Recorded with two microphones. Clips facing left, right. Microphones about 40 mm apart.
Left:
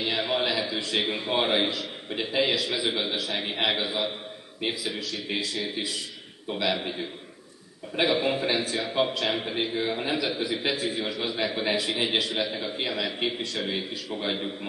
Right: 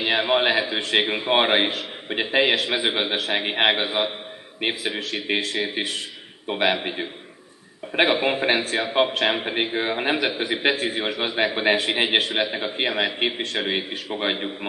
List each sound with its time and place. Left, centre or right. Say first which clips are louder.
0.0 s a man's voice: right 6 dB; right
1.0 s speech: right 4 dB; right
1.3 s a man's voice: right 6 dB; right